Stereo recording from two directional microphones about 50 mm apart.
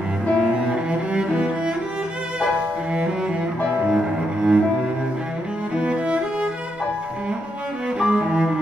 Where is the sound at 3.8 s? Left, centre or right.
Centre.